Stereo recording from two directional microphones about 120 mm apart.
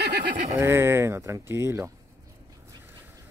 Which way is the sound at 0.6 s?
20° right (ahead or behind).